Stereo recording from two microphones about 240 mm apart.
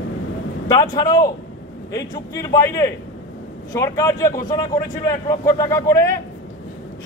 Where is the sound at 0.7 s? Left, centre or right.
Centre.